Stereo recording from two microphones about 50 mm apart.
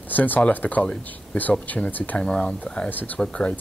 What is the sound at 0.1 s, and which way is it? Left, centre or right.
Speech, left.